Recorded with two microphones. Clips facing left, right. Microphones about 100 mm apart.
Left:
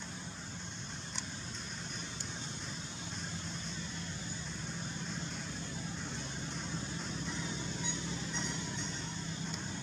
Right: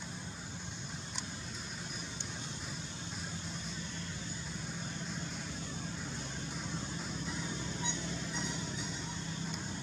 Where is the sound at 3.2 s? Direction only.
5° right (ahead or behind).